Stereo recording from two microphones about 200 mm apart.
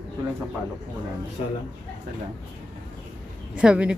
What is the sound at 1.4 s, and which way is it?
Speech, 30° left (ahead or behind).